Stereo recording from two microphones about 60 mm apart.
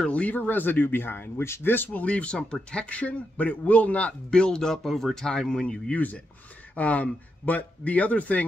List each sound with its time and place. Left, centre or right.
0.0 s speech: left
2.0 s speech: centre
4.3 s speech: centre